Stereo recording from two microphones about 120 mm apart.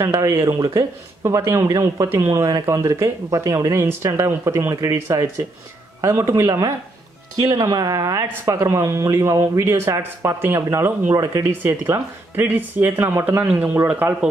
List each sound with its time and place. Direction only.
0.0 s speech: 25° right (ahead or behind)